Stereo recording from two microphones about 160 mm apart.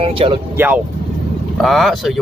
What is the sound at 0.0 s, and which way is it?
Speech, 35° right (ahead or behind).